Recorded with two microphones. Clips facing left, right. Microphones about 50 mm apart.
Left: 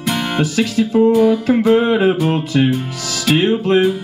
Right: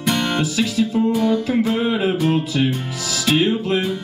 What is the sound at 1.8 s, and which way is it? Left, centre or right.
Music, left.